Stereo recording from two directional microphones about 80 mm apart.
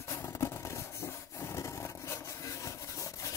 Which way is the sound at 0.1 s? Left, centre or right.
Left.